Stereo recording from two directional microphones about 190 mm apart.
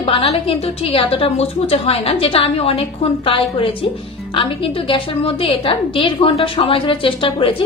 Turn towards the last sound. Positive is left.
turn(degrees=30)  # may be behind; listen again after turning